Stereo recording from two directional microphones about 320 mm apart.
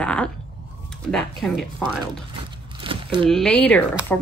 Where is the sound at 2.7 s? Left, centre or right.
Centre.